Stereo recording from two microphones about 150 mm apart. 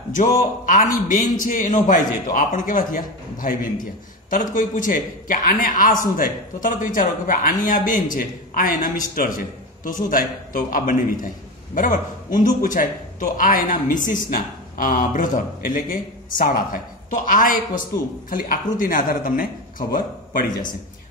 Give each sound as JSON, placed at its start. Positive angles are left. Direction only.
{"t": 0.2, "sound": "a man's voice", "side_deg": 60}